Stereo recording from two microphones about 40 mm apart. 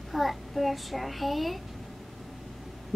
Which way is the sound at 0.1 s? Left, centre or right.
Centre.